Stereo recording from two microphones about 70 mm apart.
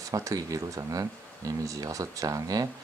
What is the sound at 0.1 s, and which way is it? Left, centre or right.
Speech, right.